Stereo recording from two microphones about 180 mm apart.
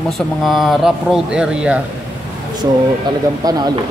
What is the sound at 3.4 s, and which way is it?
Speech, 20° right (ahead or behind).